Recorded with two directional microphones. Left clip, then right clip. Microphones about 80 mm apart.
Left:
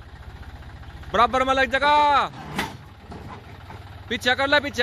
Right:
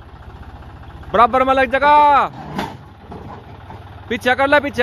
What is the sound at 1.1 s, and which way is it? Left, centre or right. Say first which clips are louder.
Speech: right 6 dB; centre.